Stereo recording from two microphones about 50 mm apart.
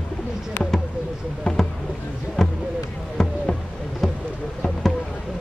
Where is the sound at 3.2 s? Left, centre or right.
Centre.